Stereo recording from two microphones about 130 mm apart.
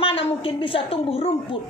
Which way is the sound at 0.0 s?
45° left (ahead or behind).